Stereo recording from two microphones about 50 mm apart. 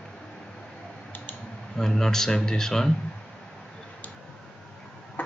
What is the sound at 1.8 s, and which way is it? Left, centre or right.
Speech, centre.